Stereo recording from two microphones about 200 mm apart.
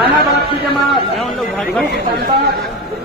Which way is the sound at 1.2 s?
5° right (ahead or behind).